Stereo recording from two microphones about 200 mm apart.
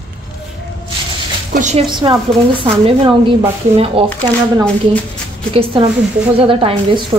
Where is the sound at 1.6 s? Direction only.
30° right (ahead or behind).